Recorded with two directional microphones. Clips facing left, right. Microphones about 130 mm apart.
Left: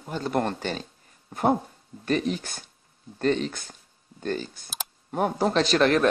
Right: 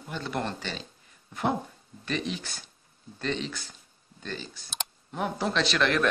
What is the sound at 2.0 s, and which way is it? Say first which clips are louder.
Speech: left 6 dB; 45° left (ahead or behind).